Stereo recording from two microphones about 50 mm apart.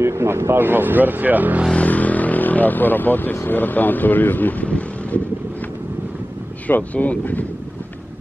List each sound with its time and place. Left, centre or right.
0.0 s speech: right
1.8 s vehicle: left
3.3 s speech: left
6.7 s speech: left